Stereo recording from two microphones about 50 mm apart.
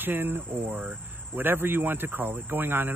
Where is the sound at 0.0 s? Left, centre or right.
Right.